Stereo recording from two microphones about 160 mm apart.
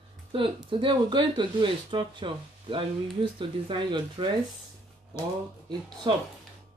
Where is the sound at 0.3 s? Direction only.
30° right (ahead or behind).